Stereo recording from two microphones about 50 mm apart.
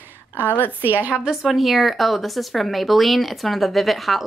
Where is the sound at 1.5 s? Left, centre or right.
Centre.